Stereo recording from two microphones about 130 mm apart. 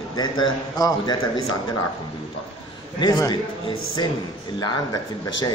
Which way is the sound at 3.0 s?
30° left (ahead or behind).